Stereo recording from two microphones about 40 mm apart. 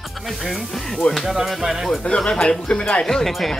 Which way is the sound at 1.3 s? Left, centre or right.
Centre.